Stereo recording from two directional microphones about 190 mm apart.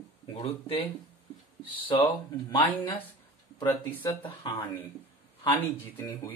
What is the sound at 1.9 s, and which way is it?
Speech, 25° left (ahead or behind).